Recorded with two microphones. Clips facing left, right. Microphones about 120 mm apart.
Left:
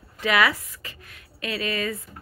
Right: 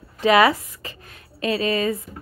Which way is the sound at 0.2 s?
30° right (ahead or behind).